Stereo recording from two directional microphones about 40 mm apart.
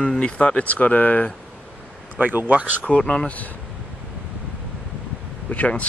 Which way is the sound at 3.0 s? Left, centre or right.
Left.